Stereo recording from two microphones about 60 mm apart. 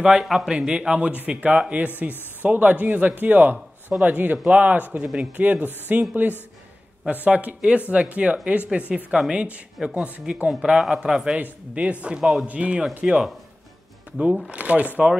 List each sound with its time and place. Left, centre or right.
0.0 s a man's voice: centre
5.0 s a man's voice: centre
5.3 s a man's voice: right
11.3 s speech: right
12.2 s a man's voice: centre
12.4 s a man's voice: right
14.5 s speech: right